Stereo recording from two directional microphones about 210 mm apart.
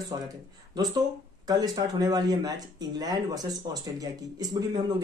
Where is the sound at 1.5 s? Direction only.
15° right (ahead or behind).